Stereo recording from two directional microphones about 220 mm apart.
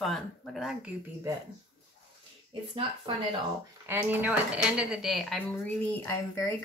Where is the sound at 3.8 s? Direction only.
10° right (ahead or behind); by 6.5 s 10° left (ahead or behind).